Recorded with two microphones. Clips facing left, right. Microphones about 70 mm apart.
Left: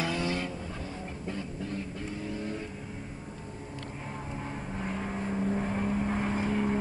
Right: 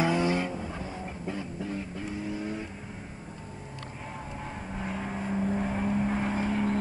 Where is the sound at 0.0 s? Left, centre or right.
Centre.